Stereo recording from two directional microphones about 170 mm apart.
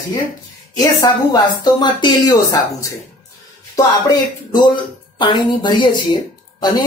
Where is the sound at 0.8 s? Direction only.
20° left (ahead or behind).